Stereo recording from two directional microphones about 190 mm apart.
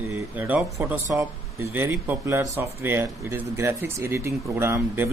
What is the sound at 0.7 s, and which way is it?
Speech, 15° right (ahead or behind).